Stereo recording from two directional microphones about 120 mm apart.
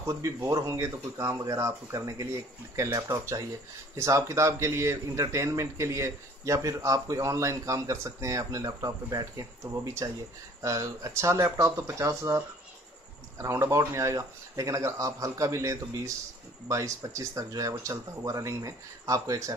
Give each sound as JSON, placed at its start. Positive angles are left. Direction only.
{"t": 0.0, "sound": "a man's voice", "side_deg": -25}
{"t": 10.6, "sound": "a man's voice", "side_deg": -30}